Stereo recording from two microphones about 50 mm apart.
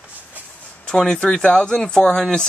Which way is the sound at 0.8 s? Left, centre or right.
Centre.